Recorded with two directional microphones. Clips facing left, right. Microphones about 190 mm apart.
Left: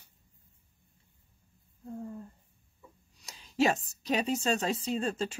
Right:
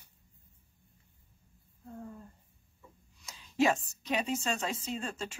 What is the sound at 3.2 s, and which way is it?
A woman's voice, 40° left (ahead or behind).